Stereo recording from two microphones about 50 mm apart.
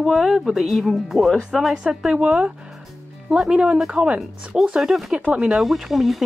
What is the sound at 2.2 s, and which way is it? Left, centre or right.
Speech, right.